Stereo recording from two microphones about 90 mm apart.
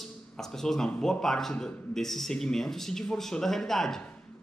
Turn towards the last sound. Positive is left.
turn(degrees=5)  # may be behind; listen again after turning